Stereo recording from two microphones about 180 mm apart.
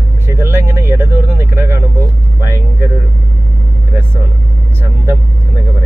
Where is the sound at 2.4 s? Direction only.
15° right (ahead or behind).